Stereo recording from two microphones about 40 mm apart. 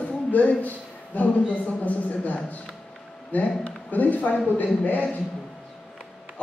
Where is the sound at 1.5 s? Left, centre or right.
Left.